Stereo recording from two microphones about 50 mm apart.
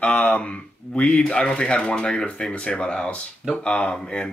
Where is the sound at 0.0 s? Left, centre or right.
Left.